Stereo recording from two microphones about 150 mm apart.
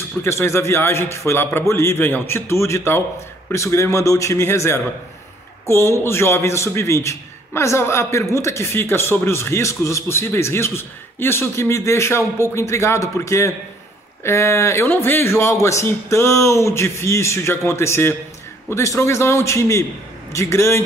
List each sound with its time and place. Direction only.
0.2 s a man's voice: 15° left (ahead or behind)